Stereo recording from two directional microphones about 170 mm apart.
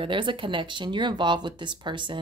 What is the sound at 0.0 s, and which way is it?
Speech, 30° right (ahead or behind).